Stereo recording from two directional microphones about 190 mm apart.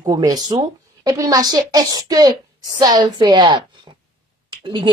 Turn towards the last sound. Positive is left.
turn(degrees=-25)  # may be behind; listen again after turning